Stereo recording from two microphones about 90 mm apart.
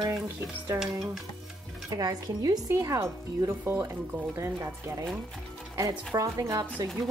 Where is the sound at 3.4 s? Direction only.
25° right (ahead or behind).